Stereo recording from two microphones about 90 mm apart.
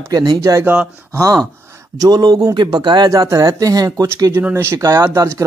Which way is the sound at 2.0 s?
50° right (ahead or behind).